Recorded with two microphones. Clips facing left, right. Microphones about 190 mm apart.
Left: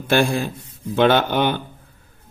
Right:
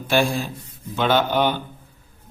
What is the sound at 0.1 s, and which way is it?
A man's voice, 55° left (ahead or behind).